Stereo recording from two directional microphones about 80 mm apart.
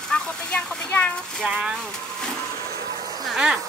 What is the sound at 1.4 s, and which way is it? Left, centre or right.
Speech, centre.